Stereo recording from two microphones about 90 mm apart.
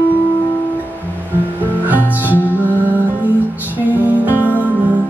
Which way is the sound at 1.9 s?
20° right (ahead or behind).